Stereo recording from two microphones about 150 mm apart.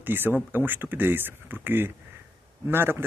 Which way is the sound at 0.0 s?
15° right (ahead or behind).